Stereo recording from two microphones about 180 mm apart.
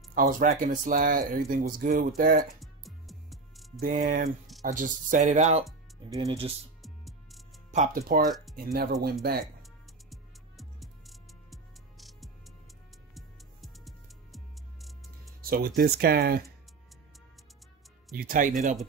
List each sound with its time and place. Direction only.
0.1 s speech: 50° right (ahead or behind)
2.4 s music: centre (ahead or behind)
3.8 s speech: 50° right (ahead or behind)
6.0 s speech: 20° right (ahead or behind)
6.8 s music: centre (ahead or behind)
7.7 s speech: 45° right (ahead or behind)
10.6 s music: centre (ahead or behind)
15.5 s speech: 60° right (ahead or behind)
18.1 s speech: 50° right (ahead or behind)